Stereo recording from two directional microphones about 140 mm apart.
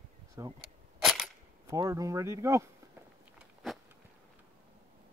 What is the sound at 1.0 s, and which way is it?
Cap gun, centre (ahead or behind).